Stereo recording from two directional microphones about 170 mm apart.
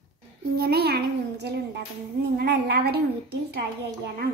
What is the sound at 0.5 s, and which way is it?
A woman's voice, 65° right (ahead or behind).